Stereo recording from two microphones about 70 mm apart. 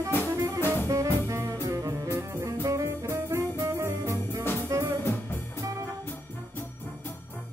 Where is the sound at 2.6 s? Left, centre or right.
Right.